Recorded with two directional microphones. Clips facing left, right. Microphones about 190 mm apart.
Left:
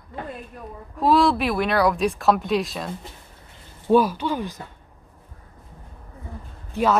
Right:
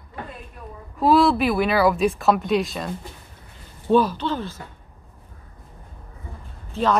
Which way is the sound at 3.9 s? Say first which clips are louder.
Left 1 dB; 10° left (ahead or behind).